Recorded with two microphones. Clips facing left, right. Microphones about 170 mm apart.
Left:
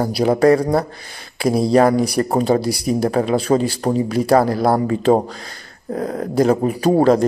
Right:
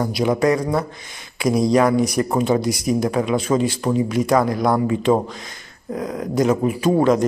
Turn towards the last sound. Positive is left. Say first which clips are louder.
# left 2 dB
turn(degrees=35)  # may be behind; listen again after turning